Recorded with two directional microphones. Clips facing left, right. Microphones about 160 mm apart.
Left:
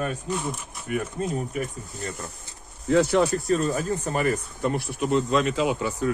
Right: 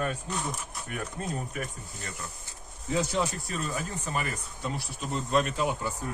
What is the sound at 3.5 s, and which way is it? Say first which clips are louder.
Speech: left 10 dB; 40° left (ahead or behind).